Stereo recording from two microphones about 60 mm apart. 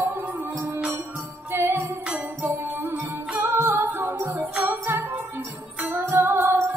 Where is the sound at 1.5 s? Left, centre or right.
Right.